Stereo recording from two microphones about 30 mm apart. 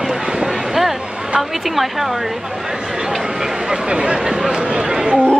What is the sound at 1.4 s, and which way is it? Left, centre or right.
A woman's voice, centre.